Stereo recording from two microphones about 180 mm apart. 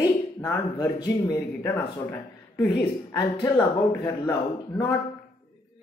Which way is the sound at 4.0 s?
20° left (ahead or behind).